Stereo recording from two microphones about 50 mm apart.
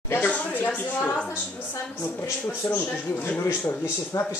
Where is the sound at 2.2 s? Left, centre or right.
Left.